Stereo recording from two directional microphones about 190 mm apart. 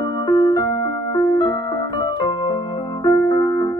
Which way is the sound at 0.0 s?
20° left (ahead or behind).